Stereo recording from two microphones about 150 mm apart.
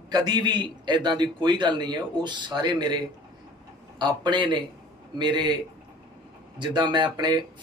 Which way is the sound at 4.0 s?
30° right (ahead or behind).